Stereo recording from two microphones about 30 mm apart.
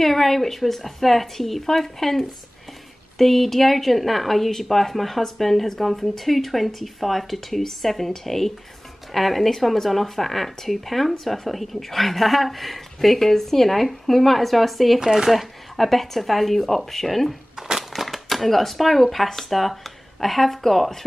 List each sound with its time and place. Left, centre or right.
0.0 s speech: centre
3.2 s speech: centre
15.0 s speech: centre
15.3 s speech: centre
17.6 s crushing: centre
17.9 s speech: centre